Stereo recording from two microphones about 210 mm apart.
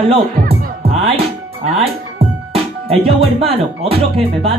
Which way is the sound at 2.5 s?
25° right (ahead or behind).